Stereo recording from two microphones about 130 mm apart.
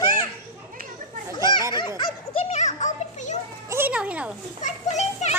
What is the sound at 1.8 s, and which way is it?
Baby laughter, 35° left (ahead or behind).